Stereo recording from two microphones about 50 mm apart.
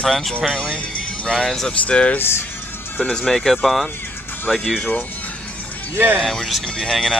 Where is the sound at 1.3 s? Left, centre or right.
Centre.